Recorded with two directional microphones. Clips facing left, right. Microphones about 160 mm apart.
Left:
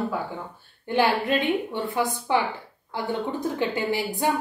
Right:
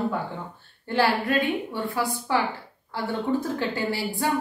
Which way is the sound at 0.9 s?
20° left (ahead or behind).